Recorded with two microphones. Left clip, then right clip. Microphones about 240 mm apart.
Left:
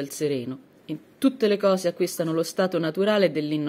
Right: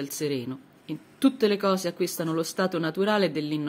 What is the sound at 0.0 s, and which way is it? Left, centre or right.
Speech, centre.